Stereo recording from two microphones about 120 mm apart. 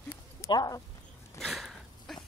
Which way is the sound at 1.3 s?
Centre (ahead or behind).